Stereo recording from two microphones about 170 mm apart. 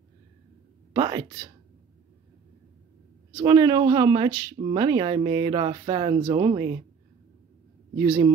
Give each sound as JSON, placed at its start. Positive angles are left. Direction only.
{"t": 0.9, "sound": "speech", "side_deg": -25}
{"t": 3.3, "sound": "speech", "side_deg": -25}
{"t": 8.0, "sound": "speech", "side_deg": -20}